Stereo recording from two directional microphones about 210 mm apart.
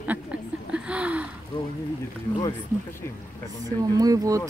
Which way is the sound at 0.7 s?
5° right (ahead or behind).